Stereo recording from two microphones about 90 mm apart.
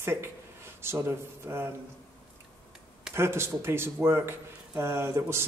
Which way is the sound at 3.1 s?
30° right (ahead or behind).